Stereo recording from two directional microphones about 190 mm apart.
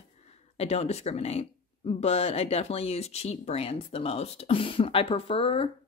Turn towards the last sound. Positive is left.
turn(degrees=30)  # may be behind; listen again after turning